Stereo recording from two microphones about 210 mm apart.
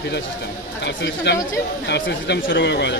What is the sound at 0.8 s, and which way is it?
A woman's voice, 55° left (ahead or behind).